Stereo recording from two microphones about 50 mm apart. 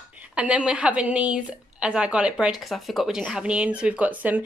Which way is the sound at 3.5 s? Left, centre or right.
Right.